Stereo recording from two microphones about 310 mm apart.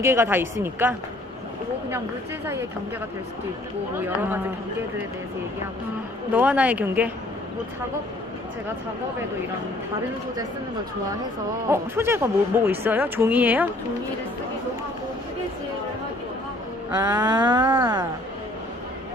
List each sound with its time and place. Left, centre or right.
0.0 s speech: centre
6.3 s a woman's voice: centre
11.7 s speech: centre
16.9 s speech: centre